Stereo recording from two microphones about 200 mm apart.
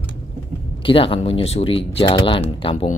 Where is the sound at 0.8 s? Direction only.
25° left (ahead or behind).